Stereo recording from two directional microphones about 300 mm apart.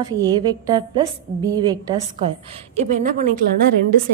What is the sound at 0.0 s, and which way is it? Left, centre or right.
A woman's voice, centre.